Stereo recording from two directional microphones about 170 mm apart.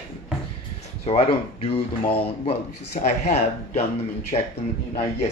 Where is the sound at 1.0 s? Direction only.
35° left (ahead or behind).